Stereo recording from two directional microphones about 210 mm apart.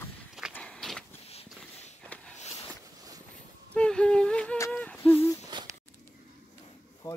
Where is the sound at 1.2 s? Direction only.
30° left (ahead or behind).